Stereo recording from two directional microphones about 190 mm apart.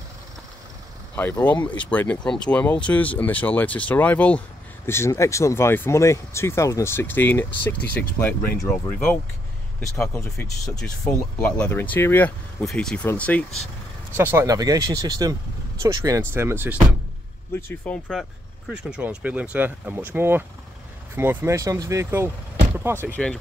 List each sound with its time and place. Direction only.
1.1 s speech: 10° left (ahead or behind)
14.1 s speech: 10° right (ahead or behind)
17.6 s speech: 10° left (ahead or behind)
18.7 s speech: 5° right (ahead or behind)
23.0 s speech: 5° left (ahead or behind)